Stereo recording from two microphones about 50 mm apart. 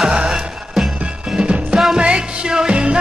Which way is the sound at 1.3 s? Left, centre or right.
Centre.